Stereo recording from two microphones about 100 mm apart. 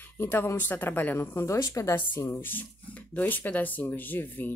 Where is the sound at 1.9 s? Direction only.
20° left (ahead or behind).